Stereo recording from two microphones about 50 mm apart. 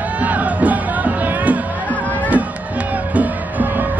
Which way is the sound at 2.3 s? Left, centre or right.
Right.